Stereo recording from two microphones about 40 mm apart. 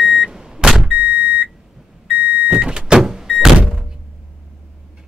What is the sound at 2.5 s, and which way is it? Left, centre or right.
Vehicle, right.